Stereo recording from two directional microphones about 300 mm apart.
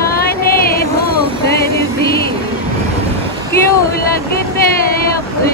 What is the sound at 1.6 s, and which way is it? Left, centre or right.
Music, left.